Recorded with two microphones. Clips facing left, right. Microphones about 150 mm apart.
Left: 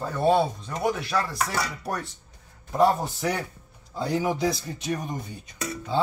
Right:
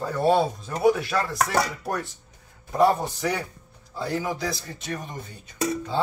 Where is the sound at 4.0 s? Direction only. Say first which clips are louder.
Left 3 dB; 15° left (ahead or behind).